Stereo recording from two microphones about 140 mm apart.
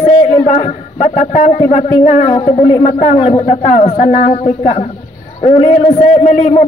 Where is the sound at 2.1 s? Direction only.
45° left (ahead or behind).